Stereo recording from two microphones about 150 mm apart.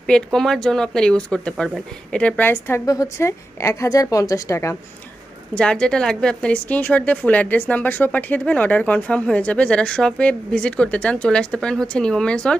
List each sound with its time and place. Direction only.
0.0 s a woman's voice: 5° left (ahead or behind); by 4.7 s 20° left (ahead or behind)
5.5 s speech: 5° left (ahead or behind)